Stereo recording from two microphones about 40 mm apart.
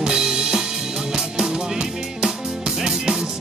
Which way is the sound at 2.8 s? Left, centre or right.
Centre.